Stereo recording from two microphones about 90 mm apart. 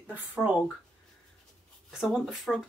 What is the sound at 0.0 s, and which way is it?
Speech, 20° right (ahead or behind).